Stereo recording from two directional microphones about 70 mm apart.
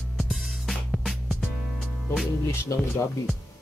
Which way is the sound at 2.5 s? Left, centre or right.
Left.